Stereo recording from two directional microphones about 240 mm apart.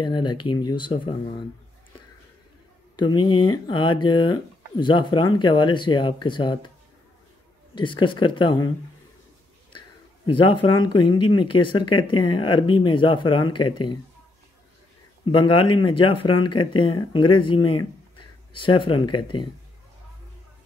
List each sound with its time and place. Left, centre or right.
0.0 s speech: centre
3.0 s speech: centre
7.7 s speech: centre
10.2 s speech: left
15.2 s speech: left